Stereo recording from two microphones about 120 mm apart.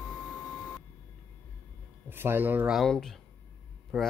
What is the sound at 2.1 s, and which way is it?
Speech, 20° right (ahead or behind).